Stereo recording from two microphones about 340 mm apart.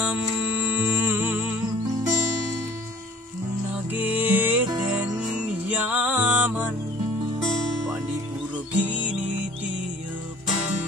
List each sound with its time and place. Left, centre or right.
0.8 s music: centre
3.9 s music: centre
8.7 s music: centre